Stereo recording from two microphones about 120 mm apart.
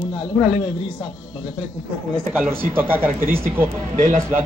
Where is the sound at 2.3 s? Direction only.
15° right (ahead or behind).